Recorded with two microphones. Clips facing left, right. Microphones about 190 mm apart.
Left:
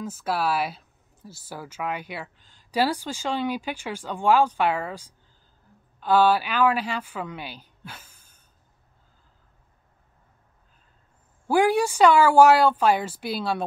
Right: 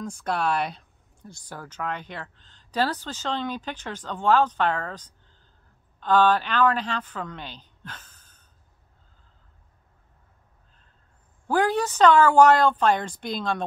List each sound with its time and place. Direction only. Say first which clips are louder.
0.0 s speech: even; 5° left (ahead or behind)
11.4 s speech: left 3 dB; 10° left (ahead or behind)